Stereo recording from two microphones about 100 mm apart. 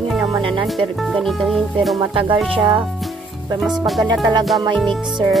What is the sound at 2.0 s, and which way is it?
Speech, 60° right (ahead or behind).